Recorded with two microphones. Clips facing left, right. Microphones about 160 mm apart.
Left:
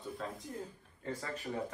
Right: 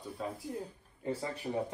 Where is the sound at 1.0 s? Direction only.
20° right (ahead or behind).